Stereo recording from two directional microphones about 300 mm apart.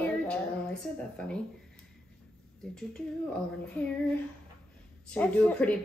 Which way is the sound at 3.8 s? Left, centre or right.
Centre.